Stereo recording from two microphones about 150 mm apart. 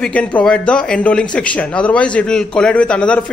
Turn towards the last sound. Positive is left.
turn(degrees=5)  # may be behind; listen again after turning